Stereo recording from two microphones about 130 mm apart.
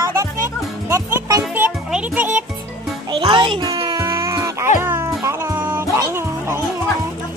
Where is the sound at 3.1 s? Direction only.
35° right (ahead or behind).